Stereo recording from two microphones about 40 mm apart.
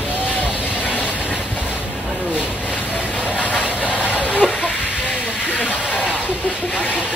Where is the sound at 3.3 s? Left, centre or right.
Left.